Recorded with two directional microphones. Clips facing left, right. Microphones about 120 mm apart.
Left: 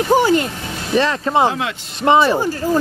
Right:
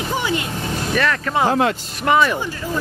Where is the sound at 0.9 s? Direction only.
25° left (ahead or behind).